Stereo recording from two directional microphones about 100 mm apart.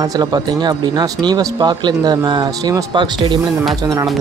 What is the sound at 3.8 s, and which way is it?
Speech, 40° right (ahead or behind).